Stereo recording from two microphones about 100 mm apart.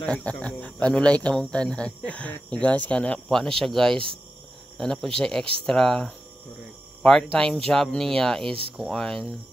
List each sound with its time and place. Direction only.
0.0 s speech: 10° left (ahead or behind)